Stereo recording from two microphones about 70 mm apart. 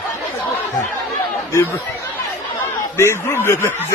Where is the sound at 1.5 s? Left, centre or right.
Left.